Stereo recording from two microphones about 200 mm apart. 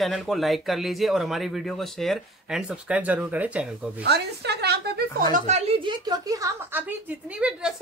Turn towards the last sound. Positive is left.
turn(degrees=-5)  # may be behind; listen again after turning